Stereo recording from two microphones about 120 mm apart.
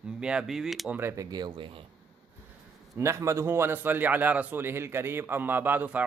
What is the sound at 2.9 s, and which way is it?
A man's voice, 25° right (ahead or behind).